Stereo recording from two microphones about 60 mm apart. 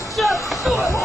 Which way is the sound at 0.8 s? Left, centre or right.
Left.